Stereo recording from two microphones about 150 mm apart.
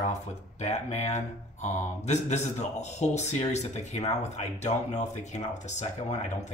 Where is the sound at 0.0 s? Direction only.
50° left (ahead or behind).